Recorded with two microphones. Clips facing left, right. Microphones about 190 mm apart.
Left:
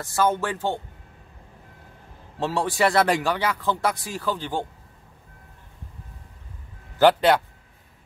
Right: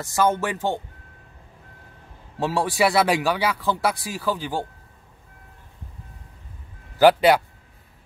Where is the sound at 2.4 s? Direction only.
10° right (ahead or behind).